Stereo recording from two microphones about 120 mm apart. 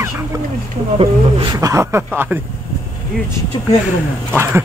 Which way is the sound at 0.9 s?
45° right (ahead or behind).